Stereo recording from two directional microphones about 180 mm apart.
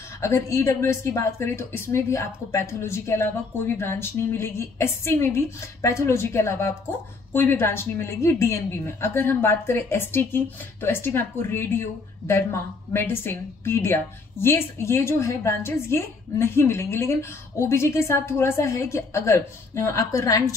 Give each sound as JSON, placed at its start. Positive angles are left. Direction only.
{"t": 0.2, "sound": "speech", "side_deg": 15}